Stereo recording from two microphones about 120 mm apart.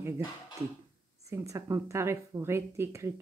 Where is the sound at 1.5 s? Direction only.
25° right (ahead or behind).